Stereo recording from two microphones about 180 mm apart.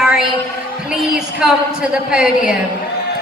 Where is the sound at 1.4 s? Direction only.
Centre (ahead or behind).